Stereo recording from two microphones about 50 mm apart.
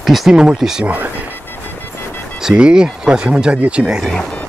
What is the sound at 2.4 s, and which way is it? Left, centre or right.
Speech, centre.